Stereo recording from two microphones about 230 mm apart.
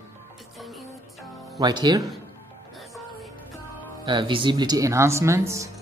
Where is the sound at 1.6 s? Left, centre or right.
Centre.